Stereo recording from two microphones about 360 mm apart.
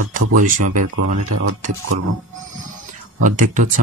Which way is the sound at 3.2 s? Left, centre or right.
Right.